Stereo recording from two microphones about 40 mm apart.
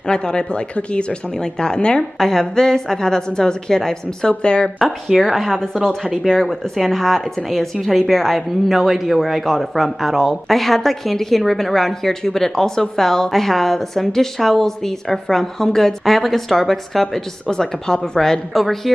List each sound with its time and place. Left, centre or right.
0.1 s a woman's voice: centre
1.6 s a woman's voice: left
4.3 s a woman's voice: left
5.2 s a woman's voice: centre
18.5 s speech: centre